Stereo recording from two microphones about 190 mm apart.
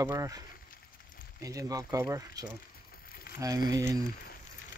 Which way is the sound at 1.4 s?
20° right (ahead or behind).